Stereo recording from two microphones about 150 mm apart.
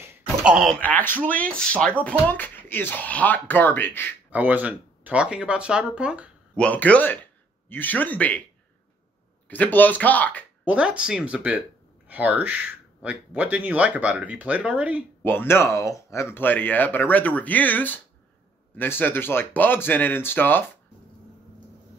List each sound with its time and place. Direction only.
0.0 s a sound: 10° right (ahead or behind)
0.7 s speech: 10° left (ahead or behind)
4.3 s speech: 10° right (ahead or behind)
6.5 s speech: 10° left (ahead or behind)
9.5 s speech: 10° left (ahead or behind)
10.6 s speech: 10° right (ahead or behind)
15.2 s speech: 15° left (ahead or behind)